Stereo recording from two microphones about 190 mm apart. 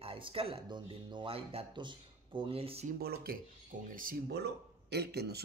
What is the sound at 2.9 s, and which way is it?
A woman's voice, 50° right (ahead or behind).